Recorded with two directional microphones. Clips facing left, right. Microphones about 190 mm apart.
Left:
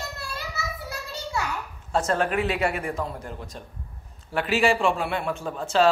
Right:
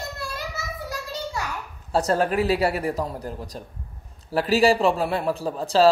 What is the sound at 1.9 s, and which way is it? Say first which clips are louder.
Speech: right 3 dB; 35° right (ahead or behind).